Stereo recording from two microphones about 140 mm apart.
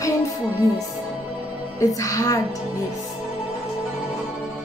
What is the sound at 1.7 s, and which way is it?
Speech, 25° left (ahead or behind).